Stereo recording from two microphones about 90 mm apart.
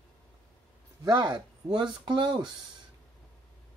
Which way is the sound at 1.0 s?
50° right (ahead or behind).